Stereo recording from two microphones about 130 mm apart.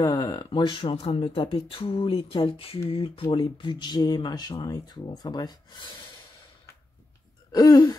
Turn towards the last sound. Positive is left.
turn(degrees=30)  # may be behind; listen again after turning